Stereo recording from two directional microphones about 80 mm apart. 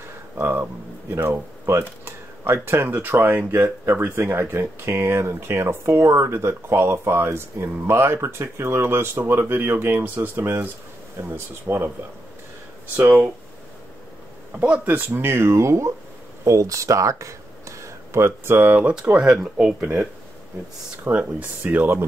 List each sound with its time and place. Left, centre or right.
0.4 s speech: right
12.9 s speech: right
14.6 s speech: centre
21.0 s speech: centre